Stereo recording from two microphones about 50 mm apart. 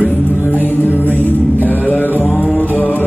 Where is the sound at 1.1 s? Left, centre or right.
Left.